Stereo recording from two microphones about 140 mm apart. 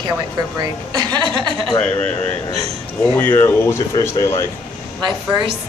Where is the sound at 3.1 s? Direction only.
15° left (ahead or behind).